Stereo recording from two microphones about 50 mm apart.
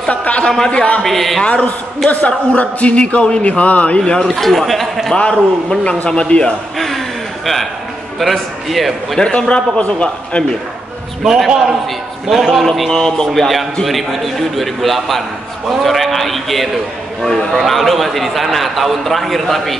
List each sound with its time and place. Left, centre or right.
0.1 s a man's voice: left
1.0 s a man's voice: centre
1.4 s a man's voice: left
4.0 s a man's voice: centre
5.1 s a man's voice: centre
8.2 s a man's voice: centre
9.2 s a man's voice: centre
11.2 s a man's voice: centre
12.9 s a man's voice: centre